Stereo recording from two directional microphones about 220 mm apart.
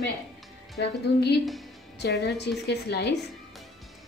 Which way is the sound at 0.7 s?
50° left (ahead or behind).